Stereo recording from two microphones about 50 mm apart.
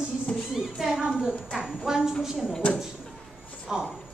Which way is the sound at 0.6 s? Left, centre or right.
Centre.